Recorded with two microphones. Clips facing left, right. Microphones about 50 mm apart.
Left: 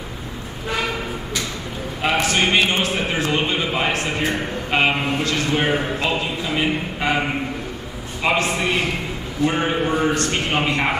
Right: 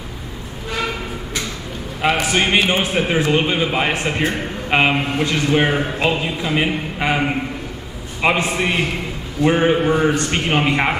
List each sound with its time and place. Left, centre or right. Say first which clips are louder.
2.0 s a man's voice: right 2 dB; centre